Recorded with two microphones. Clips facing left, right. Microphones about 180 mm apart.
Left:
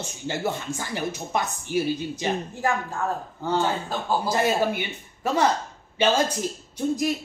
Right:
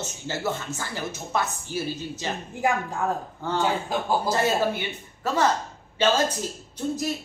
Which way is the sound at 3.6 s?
15° right (ahead or behind).